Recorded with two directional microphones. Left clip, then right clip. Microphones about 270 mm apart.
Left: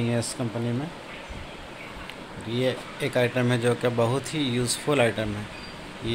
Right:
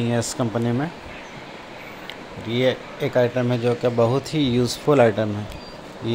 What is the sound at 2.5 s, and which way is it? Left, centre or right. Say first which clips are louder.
Speech: right 6 dB; centre.